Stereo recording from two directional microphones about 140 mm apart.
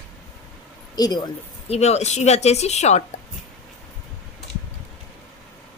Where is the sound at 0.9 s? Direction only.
30° left (ahead or behind).